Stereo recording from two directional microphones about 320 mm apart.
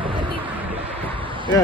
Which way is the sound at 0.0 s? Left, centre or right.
Centre.